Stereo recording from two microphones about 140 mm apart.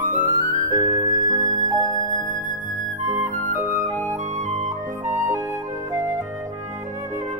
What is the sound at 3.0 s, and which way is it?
Flute, 60° right (ahead or behind).